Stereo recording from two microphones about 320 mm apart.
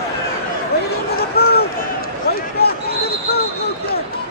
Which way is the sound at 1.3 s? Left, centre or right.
Left.